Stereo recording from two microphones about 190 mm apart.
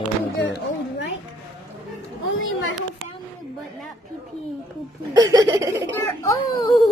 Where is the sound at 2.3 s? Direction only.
90° left.